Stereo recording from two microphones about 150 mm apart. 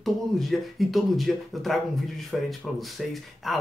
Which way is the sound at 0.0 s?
Centre (ahead or behind).